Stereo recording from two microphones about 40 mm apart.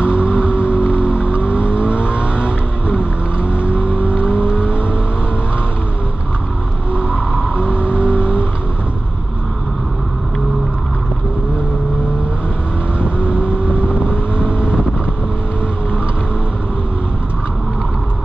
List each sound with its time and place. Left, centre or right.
0.0 s vehicle: right
6.9 s vehicle: right
13.0 s vehicle: right